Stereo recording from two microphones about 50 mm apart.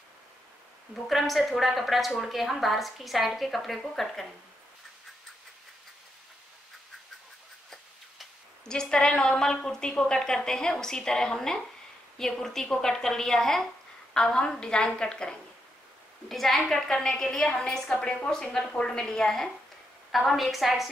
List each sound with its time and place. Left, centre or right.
1.1 s a woman's voice: centre
8.6 s a woman's voice: centre
16.3 s a woman's voice: centre